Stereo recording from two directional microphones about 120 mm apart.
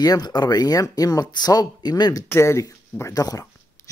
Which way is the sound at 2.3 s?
25° left (ahead or behind).